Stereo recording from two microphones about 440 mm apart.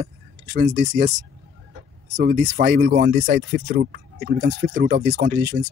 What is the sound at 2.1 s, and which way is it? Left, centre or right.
Speech, centre.